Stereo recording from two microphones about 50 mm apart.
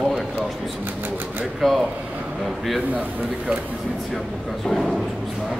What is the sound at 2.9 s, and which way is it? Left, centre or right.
Speech, right.